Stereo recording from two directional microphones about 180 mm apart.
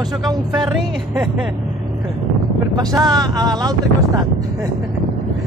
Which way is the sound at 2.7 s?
20° right (ahead or behind).